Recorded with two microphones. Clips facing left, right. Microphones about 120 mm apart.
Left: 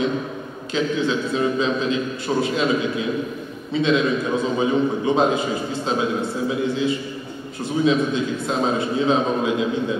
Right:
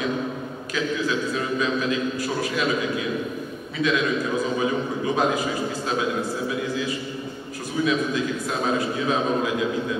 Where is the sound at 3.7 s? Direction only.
25° left (ahead or behind).